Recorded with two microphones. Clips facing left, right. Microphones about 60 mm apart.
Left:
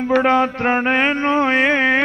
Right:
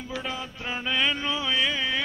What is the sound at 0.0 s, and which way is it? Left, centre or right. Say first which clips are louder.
Mantra: left 18 dB; left.